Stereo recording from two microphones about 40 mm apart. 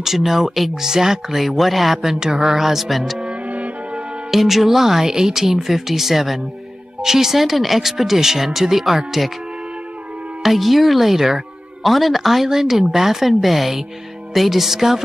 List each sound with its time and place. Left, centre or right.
0.0 s speech: centre
1.6 s speech: centre
3.4 s music: right
4.3 s speech: centre
10.4 s speech: centre